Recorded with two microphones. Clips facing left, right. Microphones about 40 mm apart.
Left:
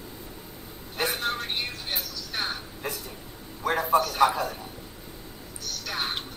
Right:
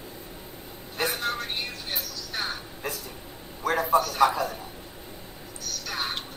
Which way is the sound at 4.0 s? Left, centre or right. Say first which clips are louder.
Even; left.